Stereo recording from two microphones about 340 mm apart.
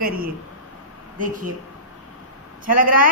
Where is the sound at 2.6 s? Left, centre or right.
Right.